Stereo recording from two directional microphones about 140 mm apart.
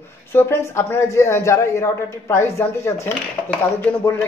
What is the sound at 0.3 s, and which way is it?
Speech, 15° left (ahead or behind).